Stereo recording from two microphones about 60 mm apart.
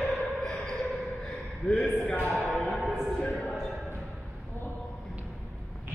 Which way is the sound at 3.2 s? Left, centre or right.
Centre.